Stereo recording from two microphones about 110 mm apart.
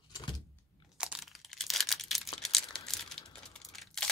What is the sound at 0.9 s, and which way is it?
Crumpling, 10° right (ahead or behind).